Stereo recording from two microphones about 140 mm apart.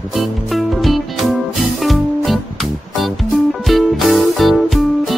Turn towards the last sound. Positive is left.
turn(degrees=0)  # may be behind; listen again after turning